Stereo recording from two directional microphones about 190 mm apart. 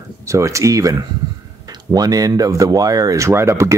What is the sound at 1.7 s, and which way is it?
Speech, 20° right (ahead or behind).